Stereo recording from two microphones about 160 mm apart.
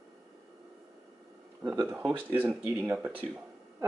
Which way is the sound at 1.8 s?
20° right (ahead or behind).